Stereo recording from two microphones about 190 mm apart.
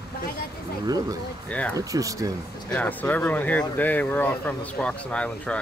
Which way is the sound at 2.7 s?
10° left (ahead or behind).